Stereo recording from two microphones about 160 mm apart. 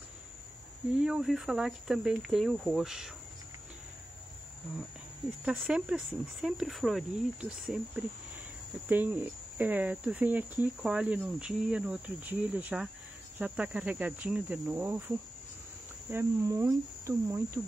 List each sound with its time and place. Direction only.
0.9 s speech: 5° right (ahead or behind)
5.4 s speech: 5° right (ahead or behind)
16.1 s speech: 15° right (ahead or behind)